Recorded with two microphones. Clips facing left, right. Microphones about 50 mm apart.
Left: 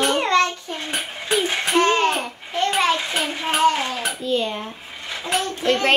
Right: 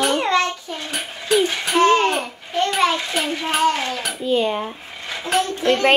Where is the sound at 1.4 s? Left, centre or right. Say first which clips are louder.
Right 1 dB; centre.